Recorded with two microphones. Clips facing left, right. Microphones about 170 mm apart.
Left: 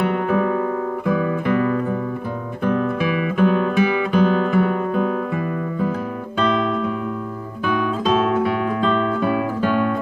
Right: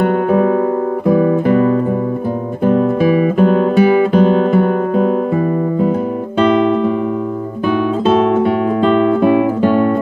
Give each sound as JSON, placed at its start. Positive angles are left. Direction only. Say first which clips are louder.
{"t": 0.3, "sound": "guitar", "louder": "right 7 dB", "side_deg": -40}
{"t": 7.6, "sound": "guitar", "louder": "right 6 dB", "side_deg": -40}
{"t": 9.6, "sound": "music", "louder": "right 7 dB", "side_deg": -45}